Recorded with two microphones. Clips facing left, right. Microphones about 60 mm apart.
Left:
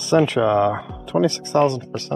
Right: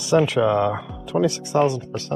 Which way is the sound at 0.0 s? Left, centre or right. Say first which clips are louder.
Left 1 dB; centre.